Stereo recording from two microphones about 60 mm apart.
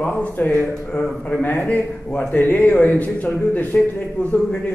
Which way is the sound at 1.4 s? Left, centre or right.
Left.